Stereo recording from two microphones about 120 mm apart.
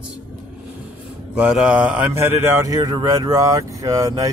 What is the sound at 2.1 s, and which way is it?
Speech, 20° right (ahead or behind).